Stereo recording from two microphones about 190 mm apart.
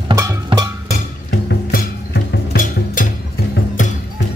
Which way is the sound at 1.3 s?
55° left (ahead or behind).